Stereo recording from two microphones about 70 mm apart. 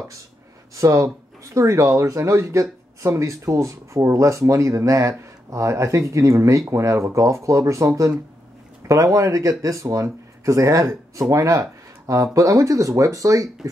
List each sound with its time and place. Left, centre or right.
0.7 s speech: right